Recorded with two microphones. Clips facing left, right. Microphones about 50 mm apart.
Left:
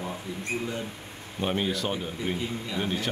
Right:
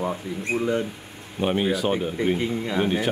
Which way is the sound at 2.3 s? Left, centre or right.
Right.